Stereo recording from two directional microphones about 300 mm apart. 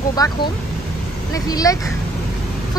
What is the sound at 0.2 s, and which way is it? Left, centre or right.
Speech, centre.